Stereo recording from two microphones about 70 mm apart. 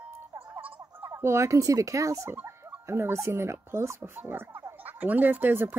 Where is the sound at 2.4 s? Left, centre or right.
Right.